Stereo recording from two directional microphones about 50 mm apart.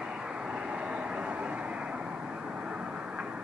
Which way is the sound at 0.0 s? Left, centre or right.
Centre.